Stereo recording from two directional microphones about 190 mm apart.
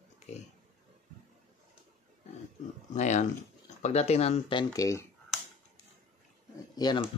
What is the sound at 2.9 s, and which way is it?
Speech, 40° left (ahead or behind).